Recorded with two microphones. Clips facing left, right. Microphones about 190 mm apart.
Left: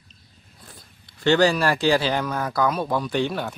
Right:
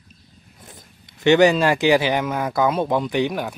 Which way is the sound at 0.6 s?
20° right (ahead or behind).